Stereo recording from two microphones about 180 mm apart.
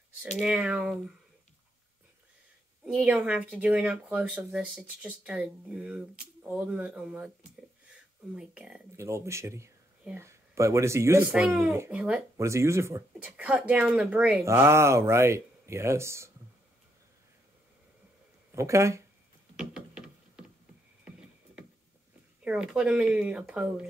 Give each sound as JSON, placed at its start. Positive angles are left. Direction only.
{"t": 0.3, "sound": "speech", "side_deg": -5}
{"t": 2.8, "sound": "speech", "side_deg": -5}
{"t": 8.4, "sound": "speech", "side_deg": -5}
{"t": 18.5, "sound": "speech", "side_deg": -15}
{"t": 19.5, "sound": "a sound", "side_deg": -5}
{"t": 21.0, "sound": "music", "side_deg": -5}
{"t": 22.4, "sound": "speech", "side_deg": -5}